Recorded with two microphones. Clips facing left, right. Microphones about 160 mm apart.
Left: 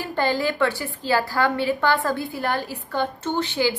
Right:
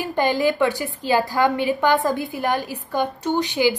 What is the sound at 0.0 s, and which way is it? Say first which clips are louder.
A woman's voice: right 3 dB; 15° right (ahead or behind).